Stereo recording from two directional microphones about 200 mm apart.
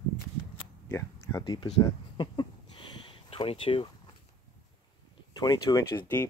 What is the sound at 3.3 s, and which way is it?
Speech, 30° left (ahead or behind).